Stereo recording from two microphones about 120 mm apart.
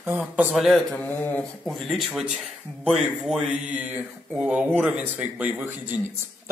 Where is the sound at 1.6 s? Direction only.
Centre (ahead or behind).